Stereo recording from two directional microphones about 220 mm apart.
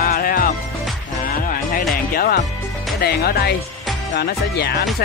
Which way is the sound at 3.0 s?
45° left (ahead or behind).